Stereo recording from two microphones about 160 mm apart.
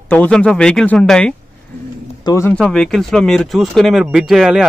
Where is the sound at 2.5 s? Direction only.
5° left (ahead or behind).